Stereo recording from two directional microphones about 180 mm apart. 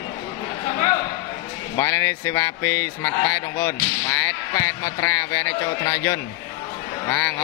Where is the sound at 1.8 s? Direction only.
15° left (ahead or behind).